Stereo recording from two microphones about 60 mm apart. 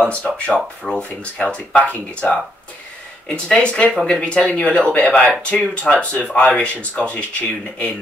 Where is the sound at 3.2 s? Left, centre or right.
Centre.